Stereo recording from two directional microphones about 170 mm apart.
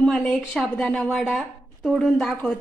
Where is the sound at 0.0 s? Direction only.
5° left (ahead or behind).